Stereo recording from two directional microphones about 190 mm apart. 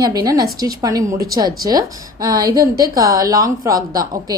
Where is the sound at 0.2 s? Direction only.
20° right (ahead or behind).